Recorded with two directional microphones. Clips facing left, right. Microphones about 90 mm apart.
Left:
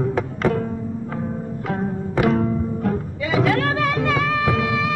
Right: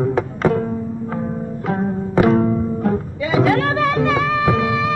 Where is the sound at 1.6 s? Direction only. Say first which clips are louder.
Right 4 dB; 25° right (ahead or behind).